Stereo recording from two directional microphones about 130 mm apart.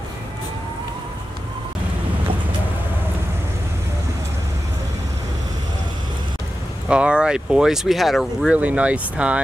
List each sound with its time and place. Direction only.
6.9 s speech: 10° right (ahead or behind)
8.5 s speech: 10° right (ahead or behind)